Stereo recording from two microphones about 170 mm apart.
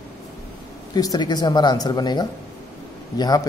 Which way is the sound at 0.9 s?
25° left (ahead or behind).